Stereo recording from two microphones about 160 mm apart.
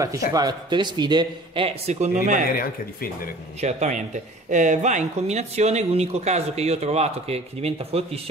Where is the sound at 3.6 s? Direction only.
45° right (ahead or behind).